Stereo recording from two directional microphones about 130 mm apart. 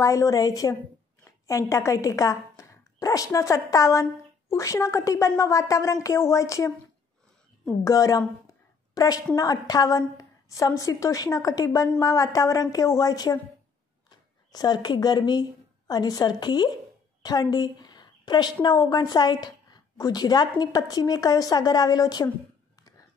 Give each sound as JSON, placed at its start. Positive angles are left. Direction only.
{"t": 0.0, "sound": "a woman's voice", "side_deg": 25}
{"t": 7.8, "sound": "a woman's voice", "side_deg": 25}
{"t": 14.5, "sound": "a woman's voice", "side_deg": 30}